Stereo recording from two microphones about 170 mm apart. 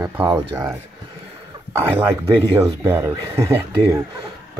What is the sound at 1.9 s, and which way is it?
Speech, 15° right (ahead or behind).